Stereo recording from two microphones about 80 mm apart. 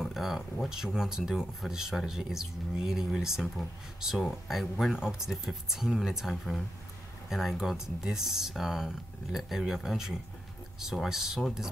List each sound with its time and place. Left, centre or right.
0.0 s speech: centre